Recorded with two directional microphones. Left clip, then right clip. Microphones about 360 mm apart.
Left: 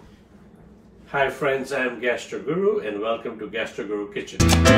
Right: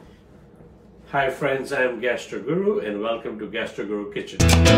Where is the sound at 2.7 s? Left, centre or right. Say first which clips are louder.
Even; centre.